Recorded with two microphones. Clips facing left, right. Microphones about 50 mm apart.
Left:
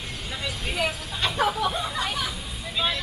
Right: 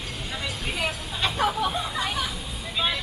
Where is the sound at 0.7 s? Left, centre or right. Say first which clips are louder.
Left 2 dB; centre.